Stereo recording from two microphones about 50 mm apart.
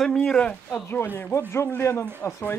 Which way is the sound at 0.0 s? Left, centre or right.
Centre.